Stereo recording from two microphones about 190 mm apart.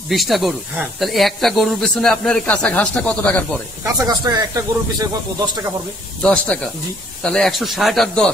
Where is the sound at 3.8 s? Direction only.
20° right (ahead or behind).